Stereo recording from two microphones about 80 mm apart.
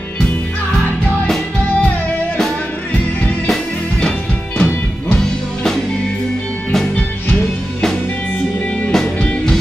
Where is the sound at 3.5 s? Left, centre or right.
Centre.